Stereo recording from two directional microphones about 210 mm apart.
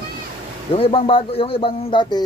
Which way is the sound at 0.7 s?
25° left (ahead or behind).